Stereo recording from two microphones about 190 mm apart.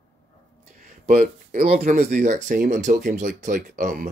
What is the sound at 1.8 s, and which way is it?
Speech, 35° right (ahead or behind).